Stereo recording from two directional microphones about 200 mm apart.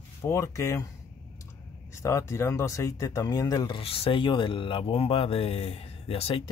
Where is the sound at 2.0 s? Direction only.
15° left (ahead or behind).